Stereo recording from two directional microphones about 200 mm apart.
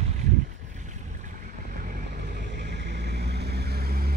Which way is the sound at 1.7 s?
40° right (ahead or behind).